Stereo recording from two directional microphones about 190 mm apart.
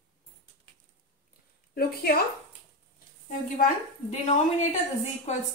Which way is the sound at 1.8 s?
55° left (ahead or behind).